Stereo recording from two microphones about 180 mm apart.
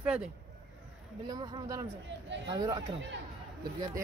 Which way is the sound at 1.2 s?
25° right (ahead or behind).